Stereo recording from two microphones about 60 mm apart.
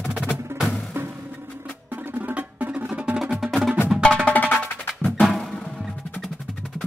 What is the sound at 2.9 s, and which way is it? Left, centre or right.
Music, centre.